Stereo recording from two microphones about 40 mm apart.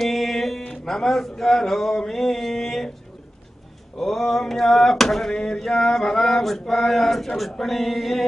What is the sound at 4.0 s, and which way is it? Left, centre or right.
A man's voice, centre.